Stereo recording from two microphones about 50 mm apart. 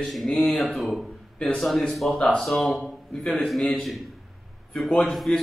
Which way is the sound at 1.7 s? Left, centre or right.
Centre.